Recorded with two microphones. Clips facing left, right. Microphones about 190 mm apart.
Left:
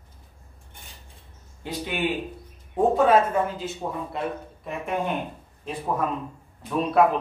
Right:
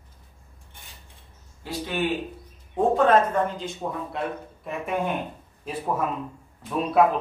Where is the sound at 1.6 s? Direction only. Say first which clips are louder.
Even; 15° left (ahead or behind).